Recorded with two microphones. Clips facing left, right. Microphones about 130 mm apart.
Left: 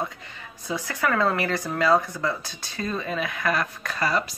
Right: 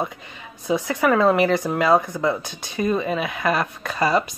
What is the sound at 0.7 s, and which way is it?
Speech, 20° right (ahead or behind).